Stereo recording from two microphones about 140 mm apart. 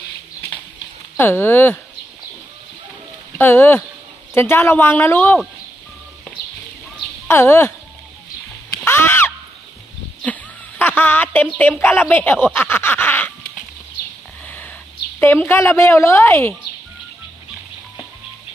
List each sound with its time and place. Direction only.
1.1 s a woman's voice: 15° left (ahead or behind)
3.3 s a woman's voice: 15° left (ahead or behind)
7.2 s speech: 15° left (ahead or behind)
8.8 s crow: 15° left (ahead or behind)
10.2 s a sound: 10° left (ahead or behind)
11.8 s a woman's voice: 15° left (ahead or behind)
12.5 s a sound: 15° left (ahead or behind)
15.1 s a woman's voice: 15° left (ahead or behind)